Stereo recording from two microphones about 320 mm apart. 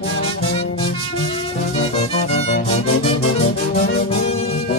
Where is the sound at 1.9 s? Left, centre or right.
Centre.